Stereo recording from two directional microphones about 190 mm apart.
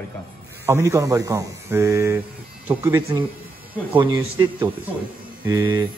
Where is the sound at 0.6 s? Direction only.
15° right (ahead or behind).